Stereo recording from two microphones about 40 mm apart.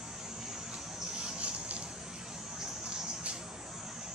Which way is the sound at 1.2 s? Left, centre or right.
Right.